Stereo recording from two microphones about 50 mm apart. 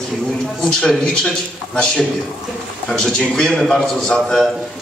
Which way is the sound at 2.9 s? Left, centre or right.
Centre.